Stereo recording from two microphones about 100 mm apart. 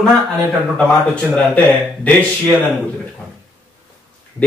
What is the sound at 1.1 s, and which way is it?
Speech, 15° left (ahead or behind).